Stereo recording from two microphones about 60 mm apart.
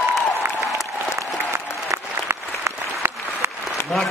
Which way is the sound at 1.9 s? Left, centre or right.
Right.